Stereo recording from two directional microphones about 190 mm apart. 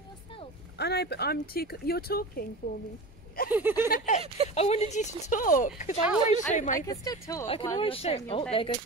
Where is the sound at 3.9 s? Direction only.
40° left (ahead or behind).